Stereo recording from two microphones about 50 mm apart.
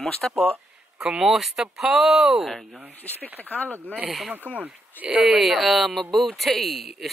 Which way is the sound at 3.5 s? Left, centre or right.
Left.